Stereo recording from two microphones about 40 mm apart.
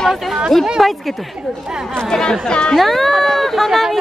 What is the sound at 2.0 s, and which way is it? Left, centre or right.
Speech, centre.